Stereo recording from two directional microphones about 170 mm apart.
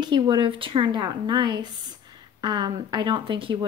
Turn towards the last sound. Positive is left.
turn(degrees=-30)  # may be behind; listen again after turning